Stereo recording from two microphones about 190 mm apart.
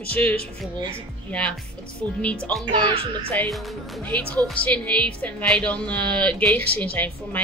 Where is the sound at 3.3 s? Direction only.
10° left (ahead or behind).